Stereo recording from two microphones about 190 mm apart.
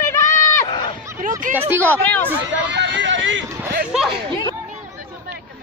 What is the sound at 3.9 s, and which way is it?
Speech, 5° right (ahead or behind).